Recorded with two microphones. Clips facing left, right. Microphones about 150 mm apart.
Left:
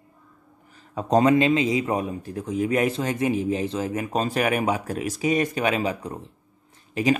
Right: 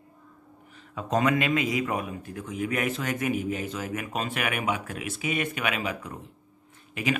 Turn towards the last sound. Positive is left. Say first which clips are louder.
# left 6 dB
turn(degrees=35)  # may be behind; listen again after turning